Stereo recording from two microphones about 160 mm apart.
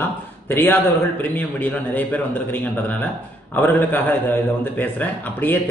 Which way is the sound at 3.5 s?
10° left (ahead or behind).